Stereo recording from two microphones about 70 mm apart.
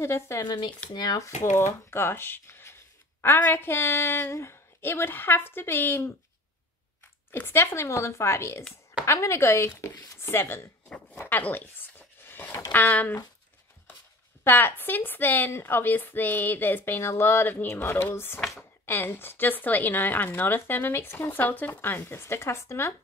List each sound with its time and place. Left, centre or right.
0.0 s speech: left
0.4 s speech: left
0.9 s speech: left
1.7 s speech: left
7.2 s speech: left
11.2 s a sound: left
12.7 s a woman's voice: left
14.4 s a woman's voice: left